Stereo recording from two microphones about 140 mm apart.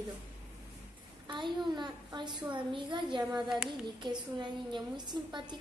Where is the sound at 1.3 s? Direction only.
35° right (ahead or behind).